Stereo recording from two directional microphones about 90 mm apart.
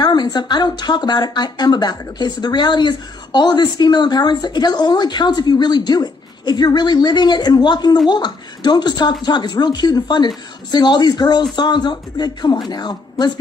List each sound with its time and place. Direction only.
0.0 s speech: 50° left (ahead or behind)